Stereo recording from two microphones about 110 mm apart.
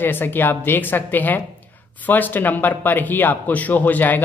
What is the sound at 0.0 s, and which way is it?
Speech, 20° left (ahead or behind).